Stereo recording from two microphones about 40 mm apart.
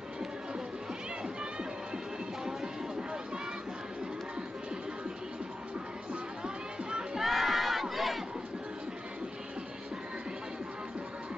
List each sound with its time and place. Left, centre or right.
1.2 s music: right
6.4 s music: right
7.2 s battle cry: centre